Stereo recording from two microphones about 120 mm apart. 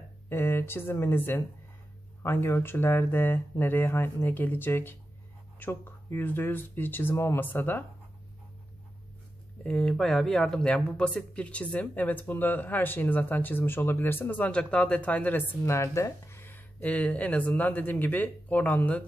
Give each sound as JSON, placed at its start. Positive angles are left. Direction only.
{"t": 0.3, "sound": "speech", "side_deg": 20}
{"t": 9.6, "sound": "speech", "side_deg": 5}
{"t": 15.6, "sound": "speech", "side_deg": 25}